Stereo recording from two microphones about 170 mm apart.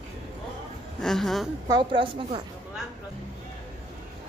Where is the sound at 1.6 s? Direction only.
30° right (ahead or behind).